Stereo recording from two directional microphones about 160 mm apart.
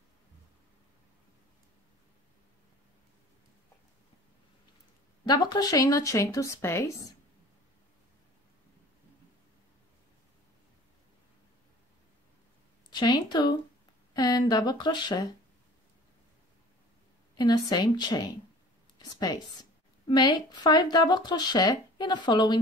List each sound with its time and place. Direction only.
5.2 s a woman's voice: 25° left (ahead or behind)
12.9 s a woman's voice: 25° left (ahead or behind)
17.4 s a woman's voice: 25° left (ahead or behind)